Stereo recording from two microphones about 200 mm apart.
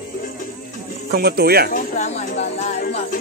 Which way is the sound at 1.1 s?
50° right (ahead or behind).